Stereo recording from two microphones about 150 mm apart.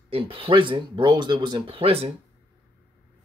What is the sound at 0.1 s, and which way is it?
Speech, 35° right (ahead or behind).